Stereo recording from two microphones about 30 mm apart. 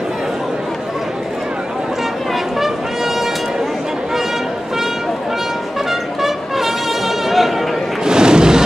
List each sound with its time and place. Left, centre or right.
5.9 s music: centre
8.0 s music: right